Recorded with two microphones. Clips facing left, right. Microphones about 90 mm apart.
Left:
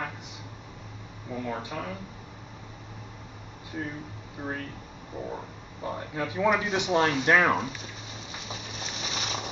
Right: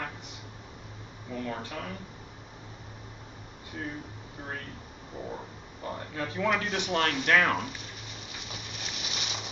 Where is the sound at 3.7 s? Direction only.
10° left (ahead or behind).